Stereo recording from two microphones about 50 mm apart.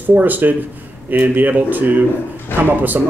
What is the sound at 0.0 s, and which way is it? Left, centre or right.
Speech, right.